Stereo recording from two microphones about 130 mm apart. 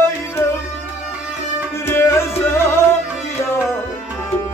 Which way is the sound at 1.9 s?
20° left (ahead or behind).